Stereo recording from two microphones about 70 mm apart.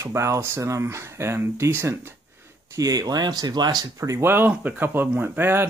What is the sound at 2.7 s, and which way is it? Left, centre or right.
Speech, right.